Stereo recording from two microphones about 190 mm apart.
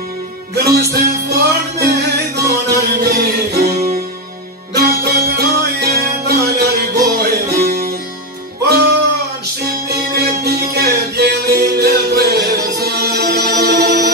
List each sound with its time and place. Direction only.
0.7 s music: 55° right (ahead or behind)
9.8 s music: 60° right (ahead or behind)